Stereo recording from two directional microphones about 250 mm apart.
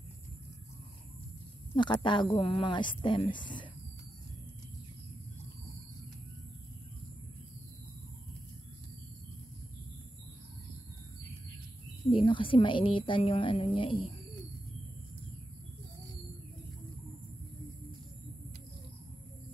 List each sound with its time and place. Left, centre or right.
1.8 s a woman's voice: centre
12.1 s a woman's voice: left